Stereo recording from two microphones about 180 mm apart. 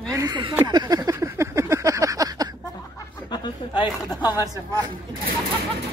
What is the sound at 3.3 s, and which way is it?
Speech, 25° left (ahead or behind).